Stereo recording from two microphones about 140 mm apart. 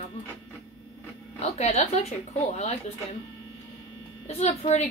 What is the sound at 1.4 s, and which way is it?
Speech, 50° left (ahead or behind).